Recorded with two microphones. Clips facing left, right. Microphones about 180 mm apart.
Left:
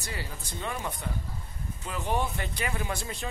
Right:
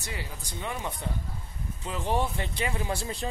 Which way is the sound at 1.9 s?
30° right (ahead or behind).